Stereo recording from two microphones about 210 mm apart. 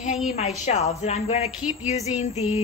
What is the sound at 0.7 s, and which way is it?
A woman's voice, 30° left (ahead or behind).